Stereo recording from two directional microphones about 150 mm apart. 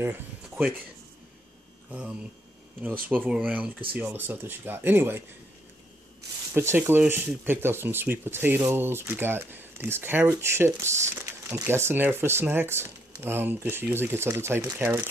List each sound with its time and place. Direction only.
0.0 s speech: 10° right (ahead or behind)
1.9 s speech: 10° right (ahead or behind)
6.5 s speech: 15° right (ahead or behind)